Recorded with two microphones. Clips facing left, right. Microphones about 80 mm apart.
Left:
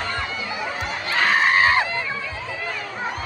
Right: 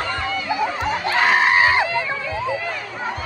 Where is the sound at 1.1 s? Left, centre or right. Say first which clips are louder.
Right 1 dB; centre.